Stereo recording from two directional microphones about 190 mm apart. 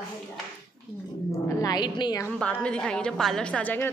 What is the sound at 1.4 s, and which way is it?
Speech, 20° left (ahead or behind).